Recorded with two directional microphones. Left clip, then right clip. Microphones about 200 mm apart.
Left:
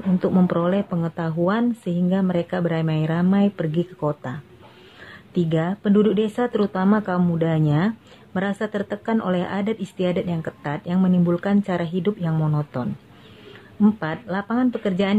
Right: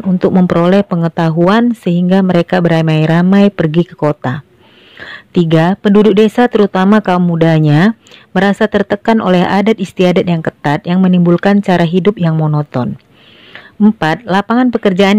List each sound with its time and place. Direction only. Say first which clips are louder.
0.2 s speech: right 11 dB; 40° right (ahead or behind)
14.0 s speech: right 14 dB; 45° right (ahead or behind)